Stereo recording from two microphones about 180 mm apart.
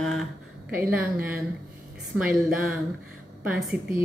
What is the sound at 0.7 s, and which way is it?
A woman's voice, 10° right (ahead or behind).